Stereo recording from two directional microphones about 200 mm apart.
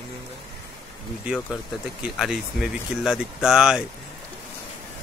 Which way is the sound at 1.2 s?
Centre (ahead or behind).